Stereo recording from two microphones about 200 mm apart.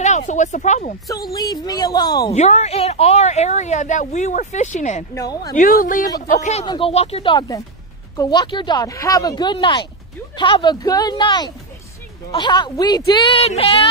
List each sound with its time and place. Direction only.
0.0 s a woman's voice: 35° left (ahead or behind)
1.0 s speech: 15° left (ahead or behind)
2.3 s a woman's voice: 35° left (ahead or behind)
5.1 s speech: 20° left (ahead or behind)
5.5 s a woman's voice: 45° left (ahead or behind)
6.6 s speech: 25° left (ahead or behind)